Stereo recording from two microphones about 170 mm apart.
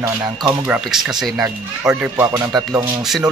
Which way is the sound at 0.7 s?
5° right (ahead or behind).